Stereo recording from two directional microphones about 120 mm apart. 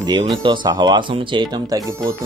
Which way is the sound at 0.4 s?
40° right (ahead or behind).